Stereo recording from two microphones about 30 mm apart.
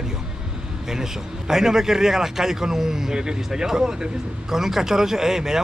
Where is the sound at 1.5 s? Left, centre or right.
Centre.